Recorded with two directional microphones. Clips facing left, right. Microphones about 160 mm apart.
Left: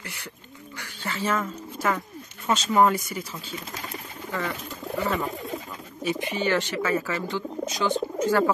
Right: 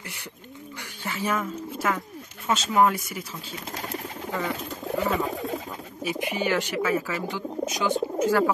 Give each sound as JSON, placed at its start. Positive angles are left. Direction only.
{"t": 0.7, "sound": "speech", "side_deg": -15}
{"t": 4.3, "sound": "speech", "side_deg": -15}